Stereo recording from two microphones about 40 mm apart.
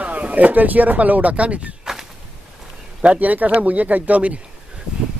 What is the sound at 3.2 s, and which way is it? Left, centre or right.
Speech, right.